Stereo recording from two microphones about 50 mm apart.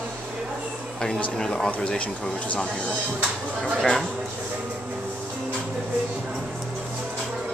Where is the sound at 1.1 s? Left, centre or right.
Centre.